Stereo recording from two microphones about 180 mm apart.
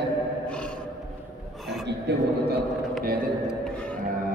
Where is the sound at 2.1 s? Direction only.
70° right (ahead or behind).